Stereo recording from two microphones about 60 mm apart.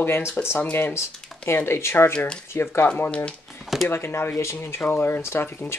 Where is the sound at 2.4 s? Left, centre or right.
Left.